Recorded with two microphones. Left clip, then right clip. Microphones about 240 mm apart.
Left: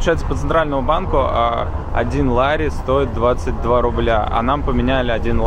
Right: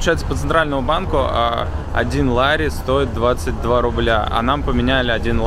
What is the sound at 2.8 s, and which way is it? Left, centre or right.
Speech, right.